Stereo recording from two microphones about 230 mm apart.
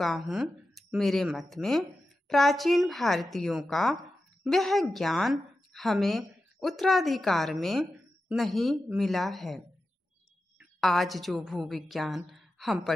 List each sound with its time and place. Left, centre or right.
0.0 s a woman's voice: centre
10.8 s a woman's voice: centre